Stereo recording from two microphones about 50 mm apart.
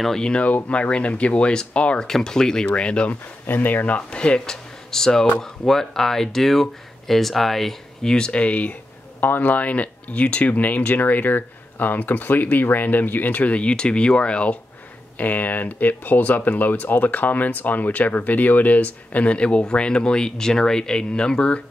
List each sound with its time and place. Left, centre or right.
0.2 s speech: left
2.0 s speech: centre
3.1 s speech: left
9.2 s speech: left
15.1 s speech: left